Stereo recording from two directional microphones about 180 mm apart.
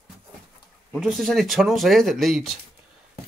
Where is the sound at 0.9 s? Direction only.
Centre (ahead or behind).